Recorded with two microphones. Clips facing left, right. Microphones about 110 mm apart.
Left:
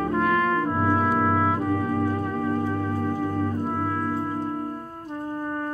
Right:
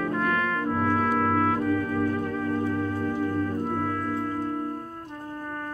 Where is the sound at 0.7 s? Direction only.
20° left (ahead or behind).